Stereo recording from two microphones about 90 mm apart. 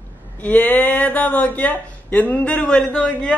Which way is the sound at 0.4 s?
20° left (ahead or behind).